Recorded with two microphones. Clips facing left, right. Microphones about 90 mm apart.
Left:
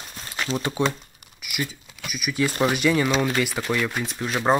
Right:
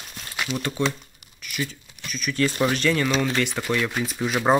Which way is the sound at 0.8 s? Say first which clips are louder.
Left 1 dB; 15° left (ahead or behind).